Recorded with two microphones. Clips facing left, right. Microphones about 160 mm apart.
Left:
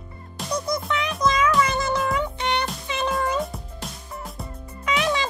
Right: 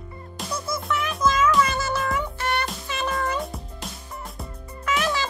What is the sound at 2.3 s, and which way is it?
Music, 20° left (ahead or behind).